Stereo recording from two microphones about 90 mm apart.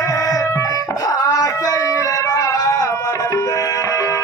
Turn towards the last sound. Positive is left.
turn(degrees=40)  # may be behind; listen again after turning